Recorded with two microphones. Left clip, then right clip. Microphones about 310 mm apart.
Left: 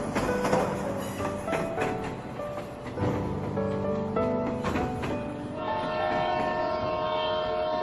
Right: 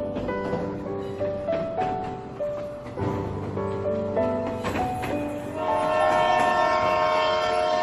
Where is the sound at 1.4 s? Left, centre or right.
Left.